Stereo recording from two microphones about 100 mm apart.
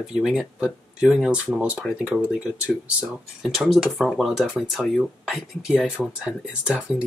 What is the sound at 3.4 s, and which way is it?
Speech, centre (ahead or behind).